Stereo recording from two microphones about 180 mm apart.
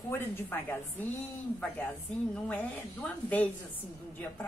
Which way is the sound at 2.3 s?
5° left (ahead or behind).